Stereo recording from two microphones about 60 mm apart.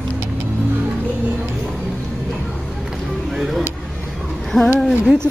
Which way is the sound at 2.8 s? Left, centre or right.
Centre.